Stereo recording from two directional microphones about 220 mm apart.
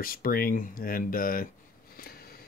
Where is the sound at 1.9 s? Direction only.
45° left (ahead or behind).